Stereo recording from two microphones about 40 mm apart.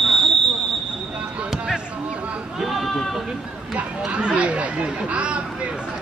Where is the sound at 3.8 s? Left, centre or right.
Right.